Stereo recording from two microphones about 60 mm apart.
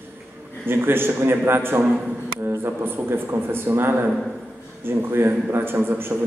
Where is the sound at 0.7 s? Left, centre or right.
Right.